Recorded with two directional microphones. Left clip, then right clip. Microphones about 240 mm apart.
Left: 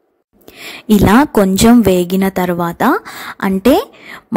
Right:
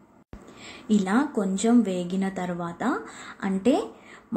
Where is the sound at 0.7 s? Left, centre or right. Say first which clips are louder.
Left 15 dB; left.